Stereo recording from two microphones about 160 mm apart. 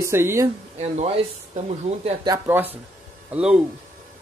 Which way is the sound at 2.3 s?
15° right (ahead or behind).